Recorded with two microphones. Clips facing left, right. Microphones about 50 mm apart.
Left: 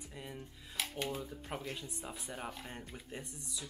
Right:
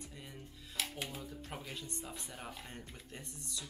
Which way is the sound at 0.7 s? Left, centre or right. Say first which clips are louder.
Left 3 dB; centre.